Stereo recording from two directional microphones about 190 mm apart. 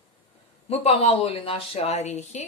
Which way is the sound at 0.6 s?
30° left (ahead or behind).